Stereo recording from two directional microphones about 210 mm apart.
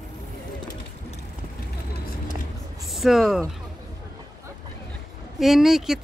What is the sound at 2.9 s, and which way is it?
Speech, centre (ahead or behind).